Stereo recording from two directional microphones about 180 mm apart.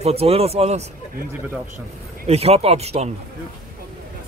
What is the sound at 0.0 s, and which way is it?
Speech, 35° right (ahead or behind).